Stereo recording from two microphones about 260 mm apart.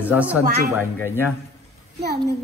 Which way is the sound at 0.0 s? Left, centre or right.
Centre.